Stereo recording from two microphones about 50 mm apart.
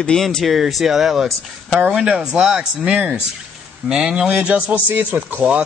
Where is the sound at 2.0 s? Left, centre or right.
Centre.